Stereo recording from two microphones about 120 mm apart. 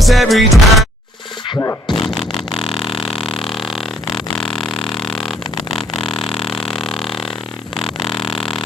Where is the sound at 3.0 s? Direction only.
45° left (ahead or behind).